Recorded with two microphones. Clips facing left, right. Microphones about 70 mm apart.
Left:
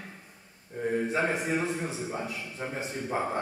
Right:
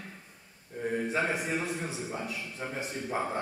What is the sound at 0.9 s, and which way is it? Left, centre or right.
A man's voice, centre.